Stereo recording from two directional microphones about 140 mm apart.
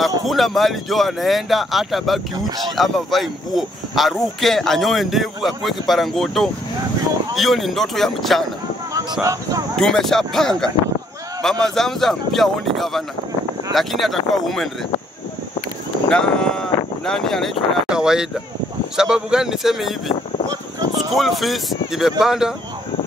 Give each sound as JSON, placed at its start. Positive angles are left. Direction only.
{"t": 0.3, "sound": "speech", "side_deg": 0}
{"t": 9.2, "sound": "speech", "side_deg": -20}
{"t": 9.8, "sound": "speech", "side_deg": 5}
{"t": 16.1, "sound": "speech", "side_deg": 5}